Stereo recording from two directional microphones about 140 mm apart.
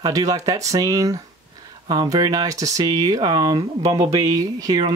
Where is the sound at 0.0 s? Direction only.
25° right (ahead or behind).